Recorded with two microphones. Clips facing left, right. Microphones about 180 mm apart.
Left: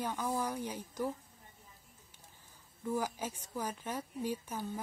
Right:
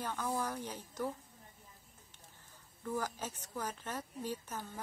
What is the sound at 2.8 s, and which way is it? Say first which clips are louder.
A woman's voice: left 3 dB; 10° left (ahead or behind).